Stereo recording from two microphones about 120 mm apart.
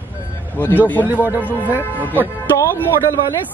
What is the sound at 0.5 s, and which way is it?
Speech, 15° left (ahead or behind).